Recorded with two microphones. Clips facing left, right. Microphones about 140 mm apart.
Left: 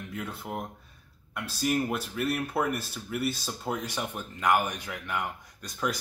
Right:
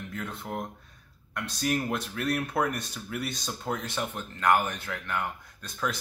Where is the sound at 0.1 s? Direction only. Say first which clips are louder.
Even; 10° left (ahead or behind).